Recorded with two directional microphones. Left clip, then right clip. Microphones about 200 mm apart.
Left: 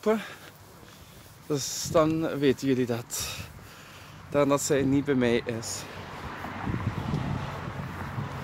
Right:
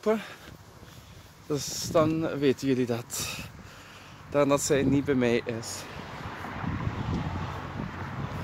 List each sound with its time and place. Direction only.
0.0 s speech: 10° left (ahead or behind)
1.5 s speech: 10° left (ahead or behind)
6.4 s vehicle: 55° left (ahead or behind)